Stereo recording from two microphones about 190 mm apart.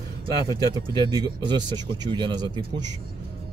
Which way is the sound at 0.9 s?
20° right (ahead or behind).